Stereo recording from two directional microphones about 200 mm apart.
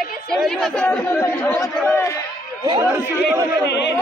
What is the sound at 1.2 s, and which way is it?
Speech, 15° left (ahead or behind).